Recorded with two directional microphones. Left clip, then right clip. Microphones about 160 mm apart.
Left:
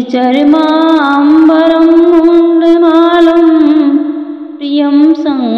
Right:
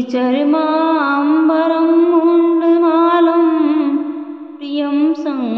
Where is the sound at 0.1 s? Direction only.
30° left (ahead or behind).